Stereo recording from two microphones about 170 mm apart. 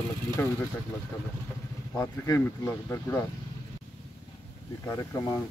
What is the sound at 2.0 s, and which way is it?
Speech, 20° left (ahead or behind).